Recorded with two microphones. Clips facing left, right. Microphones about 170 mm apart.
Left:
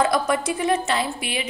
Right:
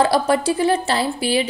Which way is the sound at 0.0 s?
30° right (ahead or behind).